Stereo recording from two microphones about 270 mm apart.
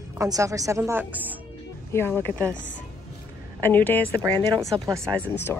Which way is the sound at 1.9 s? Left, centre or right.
Centre.